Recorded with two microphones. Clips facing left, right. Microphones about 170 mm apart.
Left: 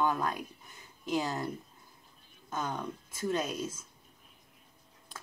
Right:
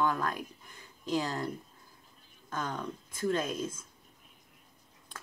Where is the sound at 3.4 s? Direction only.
5° left (ahead or behind).